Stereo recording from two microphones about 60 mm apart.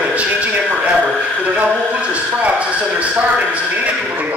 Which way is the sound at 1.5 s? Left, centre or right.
Right.